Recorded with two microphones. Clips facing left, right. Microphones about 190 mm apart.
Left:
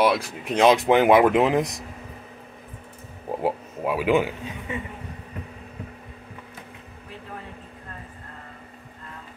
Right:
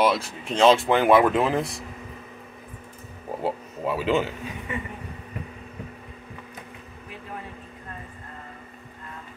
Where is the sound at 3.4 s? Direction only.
10° left (ahead or behind).